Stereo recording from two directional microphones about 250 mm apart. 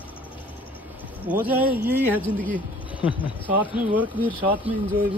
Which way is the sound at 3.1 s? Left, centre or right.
Centre.